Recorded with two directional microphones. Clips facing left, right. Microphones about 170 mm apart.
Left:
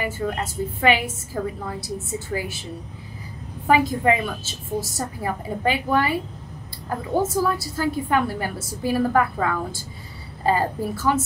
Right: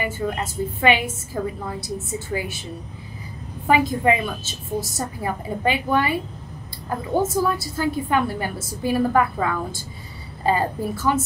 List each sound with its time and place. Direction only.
0.0 s a woman's voice: 20° right (ahead or behind)
3.6 s a woman's voice: 20° right (ahead or behind)
7.2 s a woman's voice: 20° right (ahead or behind)